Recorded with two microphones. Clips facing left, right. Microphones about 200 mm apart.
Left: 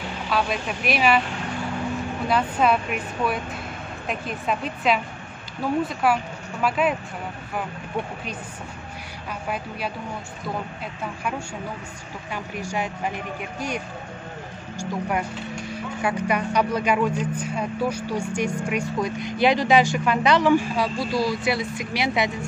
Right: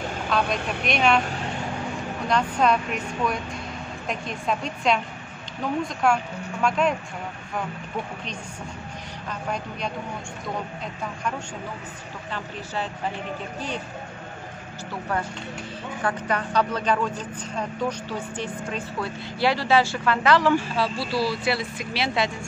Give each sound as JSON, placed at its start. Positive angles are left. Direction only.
{"t": 0.3, "sound": "speech", "side_deg": 5}
{"t": 2.2, "sound": "speech", "side_deg": 5}
{"t": 6.0, "sound": "speech", "side_deg": 5}
{"t": 12.3, "sound": "a man's voice", "side_deg": 15}